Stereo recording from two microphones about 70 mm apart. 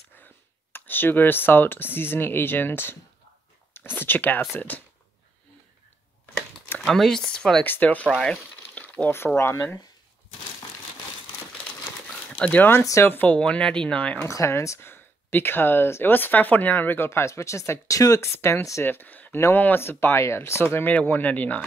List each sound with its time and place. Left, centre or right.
0.7 s speech: left
6.9 s speech: centre
7.6 s speech: left
8.7 s a sound: left
9.1 s speech: left
12.4 s speech: centre
13.0 s speech: left
13.4 s speech: centre
14.2 s speech: left
18.2 s speech: left
18.9 s speech: left
19.3 s speech: left
20.7 s speech: left